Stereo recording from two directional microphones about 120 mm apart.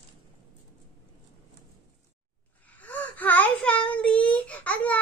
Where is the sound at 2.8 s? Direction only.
15° left (ahead or behind).